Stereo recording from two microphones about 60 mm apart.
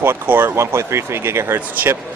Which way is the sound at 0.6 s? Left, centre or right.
Right.